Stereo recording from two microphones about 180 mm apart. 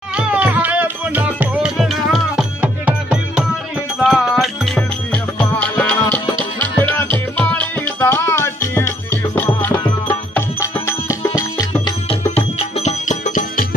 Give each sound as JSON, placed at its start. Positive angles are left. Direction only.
{"t": 0.1, "sound": "music", "side_deg": -5}
{"t": 12.2, "sound": "music", "side_deg": 35}